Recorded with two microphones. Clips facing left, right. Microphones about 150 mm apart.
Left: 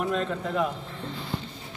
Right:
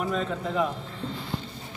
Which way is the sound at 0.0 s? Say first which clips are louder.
Left 1 dB; centre (ahead or behind).